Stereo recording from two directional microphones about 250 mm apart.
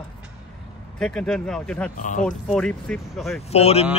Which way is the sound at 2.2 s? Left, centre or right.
Centre.